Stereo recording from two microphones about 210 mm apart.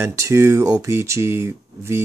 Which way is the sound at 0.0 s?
15° right (ahead or behind).